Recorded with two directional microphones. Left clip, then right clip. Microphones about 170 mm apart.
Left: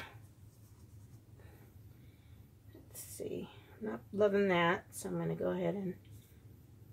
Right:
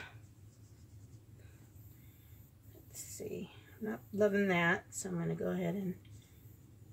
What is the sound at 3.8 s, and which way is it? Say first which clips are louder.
Speech: left 1 dB; 20° left (ahead or behind).